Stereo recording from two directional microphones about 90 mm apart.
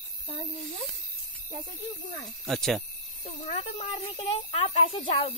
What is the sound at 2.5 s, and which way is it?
Speech, 5° left (ahead or behind).